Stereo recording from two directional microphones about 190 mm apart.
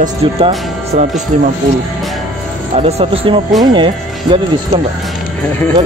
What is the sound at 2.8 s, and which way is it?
Speech, 30° right (ahead or behind).